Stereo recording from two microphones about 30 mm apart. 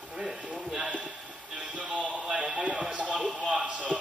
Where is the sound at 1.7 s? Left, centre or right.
Right.